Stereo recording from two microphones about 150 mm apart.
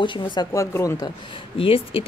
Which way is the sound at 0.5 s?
20° left (ahead or behind).